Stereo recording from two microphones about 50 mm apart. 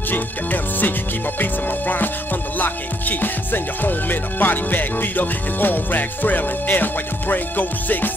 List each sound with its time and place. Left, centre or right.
0.1 s music: left